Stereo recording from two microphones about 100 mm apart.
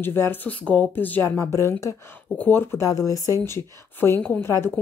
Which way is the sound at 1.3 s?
30° left (ahead or behind).